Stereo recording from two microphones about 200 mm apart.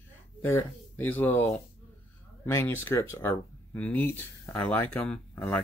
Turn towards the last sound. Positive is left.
turn(degrees=5)  # may be behind; listen again after turning